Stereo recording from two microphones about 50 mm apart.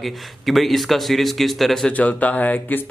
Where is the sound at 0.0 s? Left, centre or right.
Centre.